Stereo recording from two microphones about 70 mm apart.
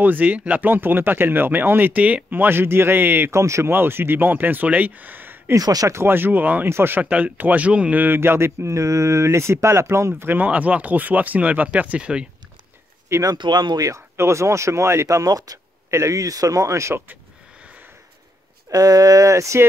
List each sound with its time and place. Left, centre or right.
0.0 s speech: right
3.7 s speech: right
5.6 s speech: right
5.9 s speech: right
7.0 s speech: centre
8.0 s speech: right; by 12.3 s centre
13.1 s speech: right
13.4 s speech: right
13.8 s speech: right
15.9 s speech: right
18.7 s speech: right